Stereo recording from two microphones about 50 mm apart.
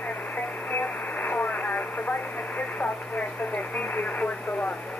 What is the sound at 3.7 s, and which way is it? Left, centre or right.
Speech, left.